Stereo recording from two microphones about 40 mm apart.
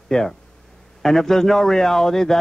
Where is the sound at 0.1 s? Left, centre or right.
Centre.